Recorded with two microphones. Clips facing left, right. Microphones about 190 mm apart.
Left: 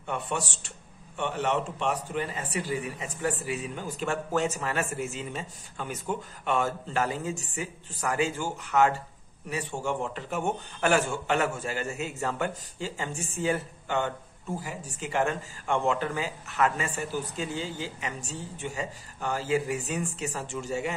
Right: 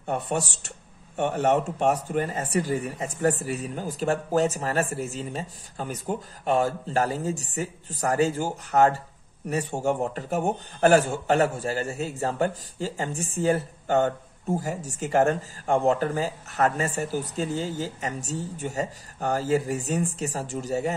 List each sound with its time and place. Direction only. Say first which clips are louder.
0.0 s a man's voice: right 4 dB; 40° right (ahead or behind)